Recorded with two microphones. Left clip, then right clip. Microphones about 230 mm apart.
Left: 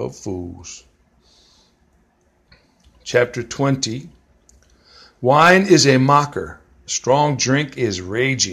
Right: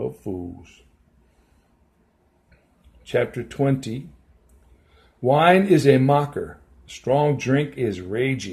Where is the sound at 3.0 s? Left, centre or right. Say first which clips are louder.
Left 6 dB; centre.